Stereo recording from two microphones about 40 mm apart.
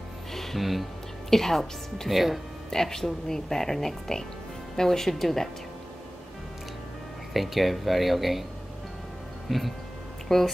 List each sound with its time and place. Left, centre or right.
0.3 s music: centre
1.3 s speech: centre
2.7 s speech: centre
7.3 s speech: centre
9.5 s speech: centre
10.2 s speech: centre